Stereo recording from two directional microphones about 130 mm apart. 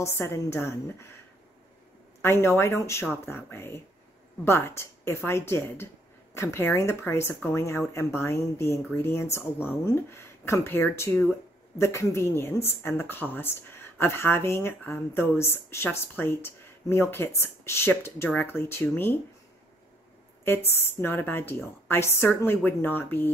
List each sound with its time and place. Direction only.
0.0 s speech: 20° left (ahead or behind)
2.2 s a woman's voice: 20° left (ahead or behind)
20.4 s a woman's voice: 15° left (ahead or behind)